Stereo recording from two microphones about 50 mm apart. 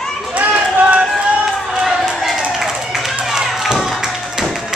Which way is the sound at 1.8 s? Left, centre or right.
Centre.